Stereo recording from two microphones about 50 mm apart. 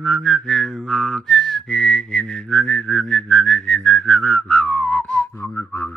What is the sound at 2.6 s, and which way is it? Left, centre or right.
Whistling, left.